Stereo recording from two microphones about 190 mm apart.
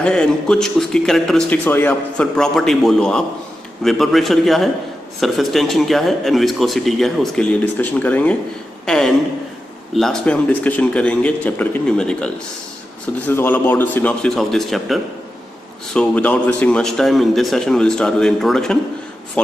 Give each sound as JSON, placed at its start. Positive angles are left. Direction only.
{"t": 0.0, "sound": "a man's voice", "side_deg": 5}
{"t": 13.3, "sound": "a man's voice", "side_deg": 10}